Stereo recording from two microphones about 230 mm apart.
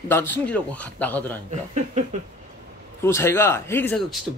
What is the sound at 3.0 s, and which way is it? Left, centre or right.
A man's voice, centre.